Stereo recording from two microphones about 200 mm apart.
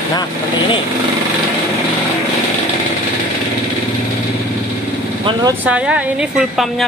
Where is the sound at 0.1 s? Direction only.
20° left (ahead or behind).